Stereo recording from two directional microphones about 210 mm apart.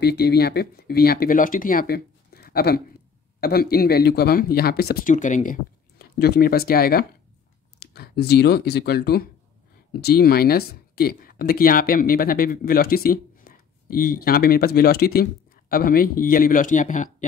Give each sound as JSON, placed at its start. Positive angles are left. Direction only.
{"t": 0.0, "sound": "speech", "side_deg": 50}